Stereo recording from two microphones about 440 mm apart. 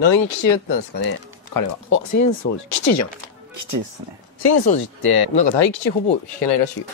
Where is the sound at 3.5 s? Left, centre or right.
Right.